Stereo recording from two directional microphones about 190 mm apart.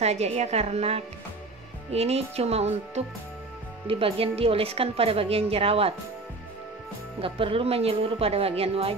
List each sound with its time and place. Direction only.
0.0 s a woman's voice: 35° right (ahead or behind)
7.2 s a woman's voice: 30° right (ahead or behind)